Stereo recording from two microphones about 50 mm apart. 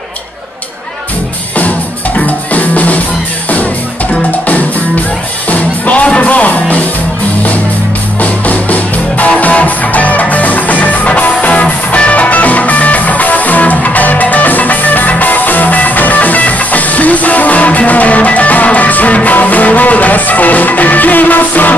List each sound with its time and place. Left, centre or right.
2.1 s drum: left
4.1 s music: left
8.2 s music: left